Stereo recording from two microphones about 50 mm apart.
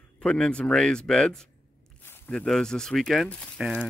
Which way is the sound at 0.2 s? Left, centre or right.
Centre.